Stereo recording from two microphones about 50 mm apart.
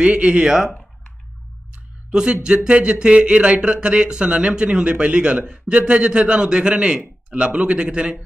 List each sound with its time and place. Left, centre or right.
0.0 s speech: right
2.0 s a sound: centre
2.4 s speech: centre